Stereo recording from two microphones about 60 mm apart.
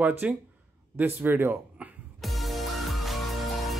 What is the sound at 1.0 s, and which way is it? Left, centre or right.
Speech, right.